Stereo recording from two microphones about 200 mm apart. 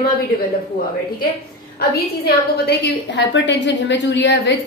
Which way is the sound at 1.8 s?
50° left (ahead or behind).